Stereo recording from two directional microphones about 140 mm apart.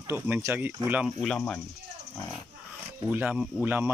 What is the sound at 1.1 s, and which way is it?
Speech, 10° left (ahead or behind).